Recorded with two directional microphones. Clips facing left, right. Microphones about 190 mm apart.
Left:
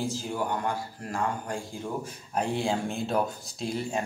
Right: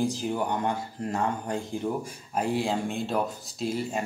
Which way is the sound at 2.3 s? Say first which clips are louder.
Right 1 dB; centre (ahead or behind).